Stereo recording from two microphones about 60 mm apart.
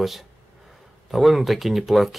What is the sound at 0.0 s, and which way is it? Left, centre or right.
Speech, centre.